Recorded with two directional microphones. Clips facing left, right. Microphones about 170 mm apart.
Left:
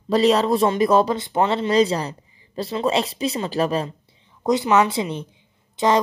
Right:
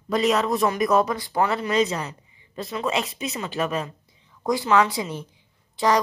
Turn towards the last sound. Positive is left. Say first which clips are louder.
# left 2 dB
turn(degrees=20)  # may be behind; listen again after turning